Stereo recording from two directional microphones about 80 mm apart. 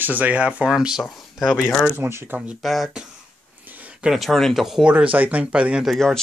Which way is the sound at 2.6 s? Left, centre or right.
Centre.